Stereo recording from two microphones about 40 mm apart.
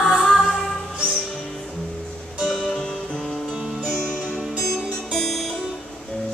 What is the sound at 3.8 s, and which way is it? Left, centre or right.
Music, centre.